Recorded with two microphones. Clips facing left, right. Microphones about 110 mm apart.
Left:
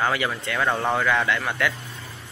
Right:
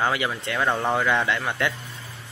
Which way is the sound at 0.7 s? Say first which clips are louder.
Even; centre (ahead or behind).